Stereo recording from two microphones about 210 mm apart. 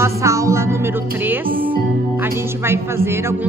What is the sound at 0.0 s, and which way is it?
Music, 15° right (ahead or behind).